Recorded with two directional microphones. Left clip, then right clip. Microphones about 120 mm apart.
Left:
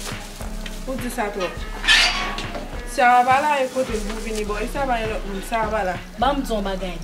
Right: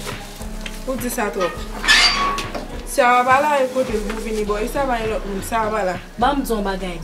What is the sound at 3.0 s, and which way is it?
Speech, 5° right (ahead or behind).